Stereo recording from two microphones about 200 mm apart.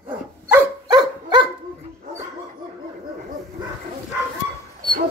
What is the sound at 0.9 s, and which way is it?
Dog, 20° right (ahead or behind).